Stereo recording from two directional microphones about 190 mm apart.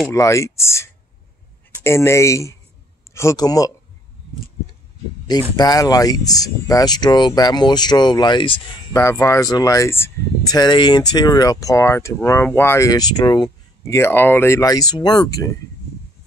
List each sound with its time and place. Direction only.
0.1 s speech: 15° left (ahead or behind)
5.6 s speech: 20° left (ahead or behind)